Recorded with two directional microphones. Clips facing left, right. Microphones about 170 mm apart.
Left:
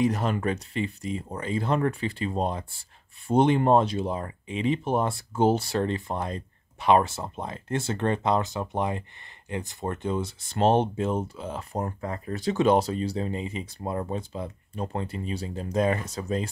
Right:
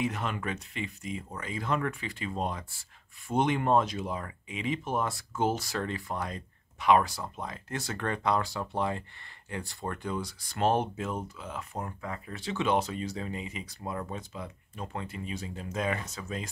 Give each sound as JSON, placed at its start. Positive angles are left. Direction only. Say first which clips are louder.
{"t": 0.0, "sound": "speech", "louder": "left 7 dB", "side_deg": 35}